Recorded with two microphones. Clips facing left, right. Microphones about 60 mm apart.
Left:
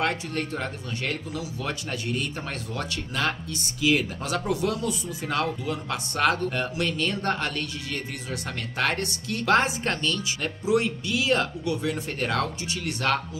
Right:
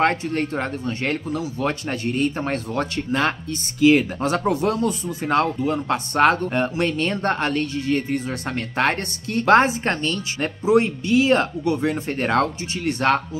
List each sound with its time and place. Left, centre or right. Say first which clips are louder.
0.0 s speech: right 7 dB; right